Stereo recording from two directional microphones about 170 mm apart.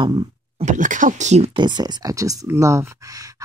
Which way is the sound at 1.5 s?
25° right (ahead or behind).